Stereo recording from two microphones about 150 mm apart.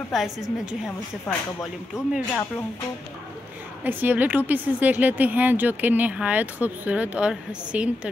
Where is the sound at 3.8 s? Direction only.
10° right (ahead or behind).